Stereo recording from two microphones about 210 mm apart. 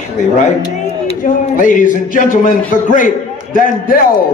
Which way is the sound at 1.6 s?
40° left (ahead or behind).